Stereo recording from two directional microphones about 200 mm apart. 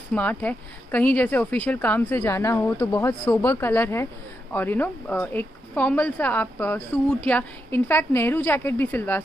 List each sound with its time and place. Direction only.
0.1 s speech: 10° left (ahead or behind)